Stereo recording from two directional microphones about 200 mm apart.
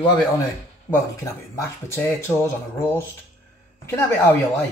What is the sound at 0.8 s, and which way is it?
Speech, 15° left (ahead or behind).